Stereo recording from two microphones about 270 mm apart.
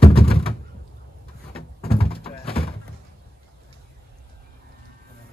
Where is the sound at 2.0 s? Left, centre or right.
Left.